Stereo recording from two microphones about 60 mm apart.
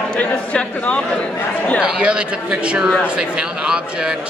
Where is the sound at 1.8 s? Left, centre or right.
Centre.